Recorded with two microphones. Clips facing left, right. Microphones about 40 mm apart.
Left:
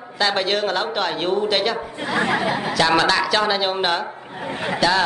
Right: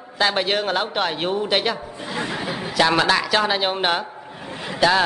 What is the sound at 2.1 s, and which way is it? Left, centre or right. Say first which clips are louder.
Speech: left 7 dB; left.